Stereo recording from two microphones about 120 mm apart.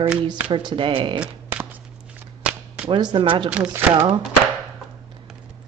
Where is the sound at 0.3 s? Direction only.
40° right (ahead or behind).